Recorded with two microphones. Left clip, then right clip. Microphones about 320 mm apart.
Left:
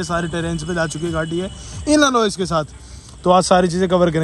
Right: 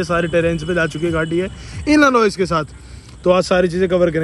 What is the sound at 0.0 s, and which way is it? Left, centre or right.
Speech, centre.